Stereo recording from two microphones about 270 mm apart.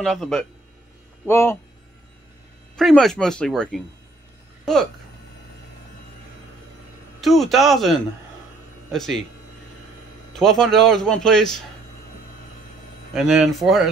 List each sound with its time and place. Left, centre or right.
0.0 s speech: centre
2.7 s speech: centre
7.2 s speech: centre
10.3 s speech: centre
13.1 s speech: centre